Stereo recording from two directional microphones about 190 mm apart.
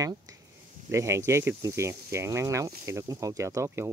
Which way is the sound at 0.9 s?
15° right (ahead or behind).